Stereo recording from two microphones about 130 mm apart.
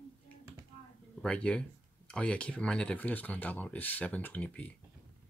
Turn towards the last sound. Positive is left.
turn(degrees=10)  # may be behind; listen again after turning